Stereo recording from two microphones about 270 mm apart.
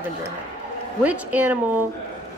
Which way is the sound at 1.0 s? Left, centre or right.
Centre.